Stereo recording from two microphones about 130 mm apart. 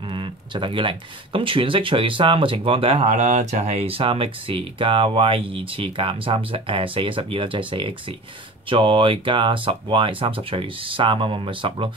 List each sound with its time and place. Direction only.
0.1 s speech: 40° right (ahead or behind)
3.1 s speech: 65° right (ahead or behind); by 11.9 s 40° right (ahead or behind)